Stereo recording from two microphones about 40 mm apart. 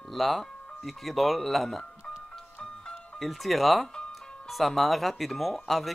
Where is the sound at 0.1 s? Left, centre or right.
Centre.